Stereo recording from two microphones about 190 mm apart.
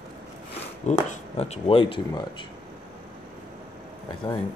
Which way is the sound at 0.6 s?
35° left (ahead or behind).